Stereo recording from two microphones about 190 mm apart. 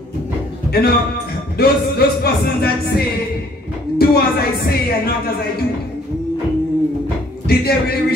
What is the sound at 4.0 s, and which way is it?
Speech, 55° left (ahead or behind).